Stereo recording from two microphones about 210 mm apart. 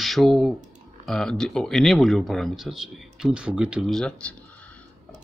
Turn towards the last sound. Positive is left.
turn(degrees=5)  # may be behind; listen again after turning